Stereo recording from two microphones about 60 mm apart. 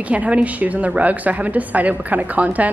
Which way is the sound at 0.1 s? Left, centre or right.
Right.